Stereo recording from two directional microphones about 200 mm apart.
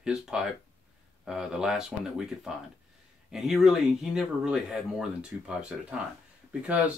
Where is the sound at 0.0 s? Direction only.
5° right (ahead or behind).